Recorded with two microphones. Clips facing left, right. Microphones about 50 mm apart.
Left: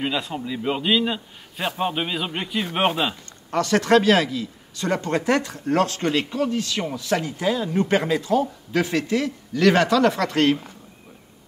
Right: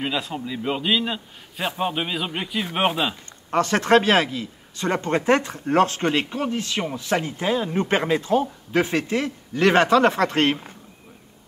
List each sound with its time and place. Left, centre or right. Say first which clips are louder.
0.0 s a man's voice: left 1 dB; centre
3.4 s speech: even; right